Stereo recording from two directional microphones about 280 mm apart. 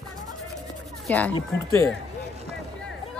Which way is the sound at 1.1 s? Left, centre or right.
Centre.